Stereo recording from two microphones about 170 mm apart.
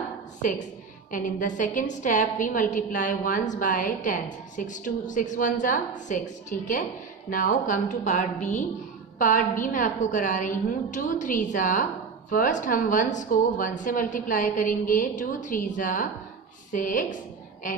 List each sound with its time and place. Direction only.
1.1 s a woman's voice: 50° left (ahead or behind)